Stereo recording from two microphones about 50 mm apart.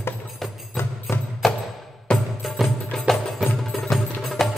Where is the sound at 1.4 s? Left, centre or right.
Centre.